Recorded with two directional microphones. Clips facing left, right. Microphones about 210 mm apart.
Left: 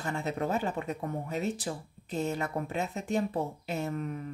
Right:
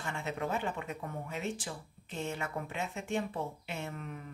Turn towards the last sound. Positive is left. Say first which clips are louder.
# left 8 dB
turn(degrees=40)  # may be behind; listen again after turning